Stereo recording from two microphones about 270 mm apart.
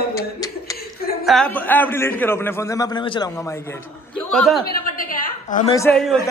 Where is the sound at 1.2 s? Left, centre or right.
Centre.